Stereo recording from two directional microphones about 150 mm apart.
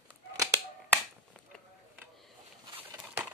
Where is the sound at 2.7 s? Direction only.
10° right (ahead or behind).